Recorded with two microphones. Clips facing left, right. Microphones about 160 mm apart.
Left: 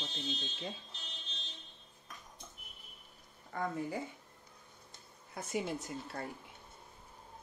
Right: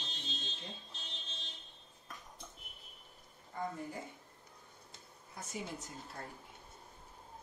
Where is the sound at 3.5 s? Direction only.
70° left (ahead or behind).